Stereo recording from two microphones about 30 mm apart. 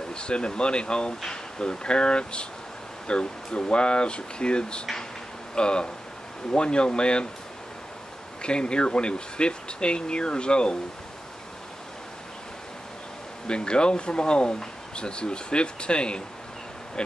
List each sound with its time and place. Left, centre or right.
0.1 s speech: left
8.4 s speech: left
13.5 s speech: left